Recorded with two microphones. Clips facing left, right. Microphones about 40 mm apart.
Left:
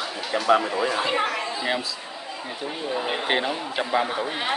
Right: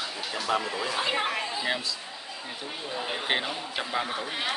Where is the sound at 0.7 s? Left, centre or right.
Centre.